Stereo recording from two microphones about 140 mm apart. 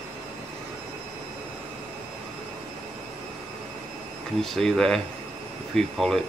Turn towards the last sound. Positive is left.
turn(degrees=0)  # may be behind; listen again after turning